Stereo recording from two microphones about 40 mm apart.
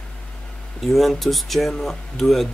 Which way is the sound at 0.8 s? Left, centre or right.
Centre.